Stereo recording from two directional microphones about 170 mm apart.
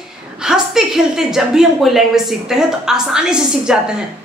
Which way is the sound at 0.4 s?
5° right (ahead or behind).